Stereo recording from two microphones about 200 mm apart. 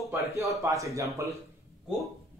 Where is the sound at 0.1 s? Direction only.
15° right (ahead or behind).